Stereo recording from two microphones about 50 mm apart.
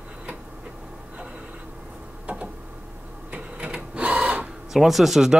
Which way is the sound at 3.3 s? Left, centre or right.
Right.